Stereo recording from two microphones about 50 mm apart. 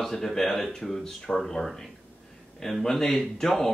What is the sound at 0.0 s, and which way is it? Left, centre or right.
Speech, centre.